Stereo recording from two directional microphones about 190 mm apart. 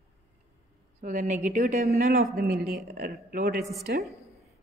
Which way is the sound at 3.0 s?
50° right (ahead or behind).